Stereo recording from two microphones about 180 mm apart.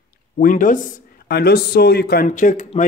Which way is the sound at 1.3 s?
60° left (ahead or behind).